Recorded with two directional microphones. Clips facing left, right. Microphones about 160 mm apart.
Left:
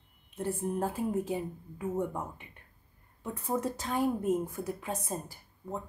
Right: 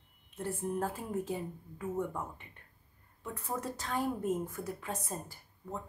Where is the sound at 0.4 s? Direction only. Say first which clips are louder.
Left 3 dB; 10° left (ahead or behind).